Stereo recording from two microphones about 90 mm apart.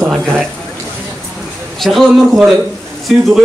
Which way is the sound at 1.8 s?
Centre (ahead or behind).